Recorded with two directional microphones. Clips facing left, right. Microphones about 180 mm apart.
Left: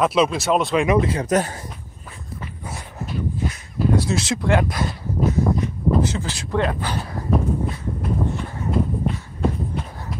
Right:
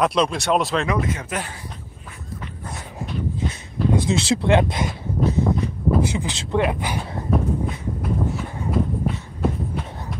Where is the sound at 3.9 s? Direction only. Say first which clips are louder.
Right 1 dB; 20° right (ahead or behind).